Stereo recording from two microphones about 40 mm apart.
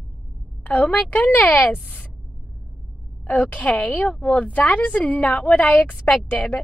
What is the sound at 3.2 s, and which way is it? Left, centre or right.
Speech, left.